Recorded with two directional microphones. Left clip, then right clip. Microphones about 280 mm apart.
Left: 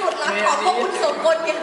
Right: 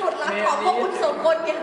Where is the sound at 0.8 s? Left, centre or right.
Centre.